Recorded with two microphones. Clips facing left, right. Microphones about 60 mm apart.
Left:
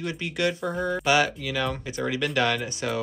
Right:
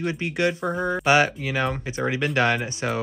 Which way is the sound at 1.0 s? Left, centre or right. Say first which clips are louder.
Right 4 dB; right.